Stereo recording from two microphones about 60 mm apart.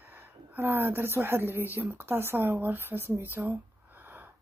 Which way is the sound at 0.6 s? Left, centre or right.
Right.